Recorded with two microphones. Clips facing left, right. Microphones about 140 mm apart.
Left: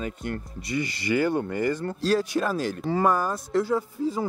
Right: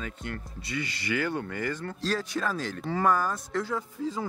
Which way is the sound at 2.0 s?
10° left (ahead or behind).